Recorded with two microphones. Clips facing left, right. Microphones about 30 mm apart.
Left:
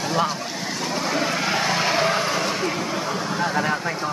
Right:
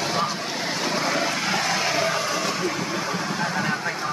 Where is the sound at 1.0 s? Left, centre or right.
Centre.